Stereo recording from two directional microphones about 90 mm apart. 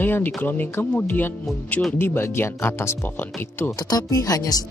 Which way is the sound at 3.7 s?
40° left (ahead or behind).